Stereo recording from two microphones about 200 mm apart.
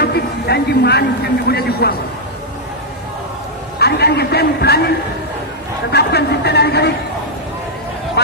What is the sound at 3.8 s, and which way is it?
A man's voice, 55° left (ahead or behind).